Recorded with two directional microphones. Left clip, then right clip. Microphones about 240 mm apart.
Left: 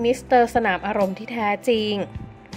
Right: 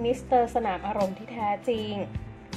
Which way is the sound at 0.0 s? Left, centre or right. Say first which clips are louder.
Left 6 dB; centre.